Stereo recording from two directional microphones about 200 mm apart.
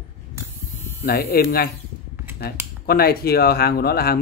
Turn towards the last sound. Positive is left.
turn(degrees=50)  # may be behind; listen again after turning